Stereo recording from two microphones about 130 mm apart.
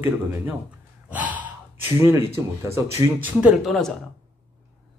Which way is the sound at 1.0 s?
10° right (ahead or behind).